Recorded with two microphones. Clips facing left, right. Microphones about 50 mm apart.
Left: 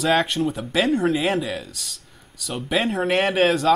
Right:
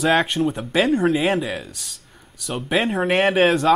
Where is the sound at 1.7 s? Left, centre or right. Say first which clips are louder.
Left 1 dB; centre.